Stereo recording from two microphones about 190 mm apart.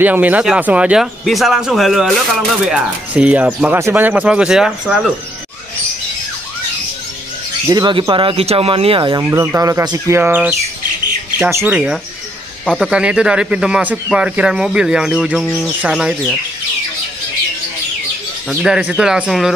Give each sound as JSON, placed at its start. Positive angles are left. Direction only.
{"t": 0.0, "sound": "a man's voice", "side_deg": -10}
{"t": 7.6, "sound": "speech", "side_deg": -20}
{"t": 9.2, "sound": "a man's voice", "side_deg": -15}
{"t": 18.5, "sound": "a man's voice", "side_deg": -5}